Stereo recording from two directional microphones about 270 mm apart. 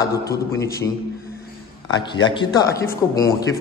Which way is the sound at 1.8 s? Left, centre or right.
Centre.